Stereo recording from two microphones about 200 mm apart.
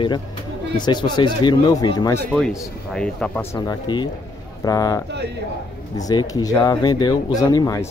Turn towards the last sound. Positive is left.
turn(degrees=15)  # may be behind; listen again after turning